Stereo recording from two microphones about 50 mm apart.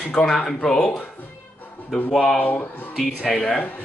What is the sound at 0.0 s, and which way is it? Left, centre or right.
Speech, centre.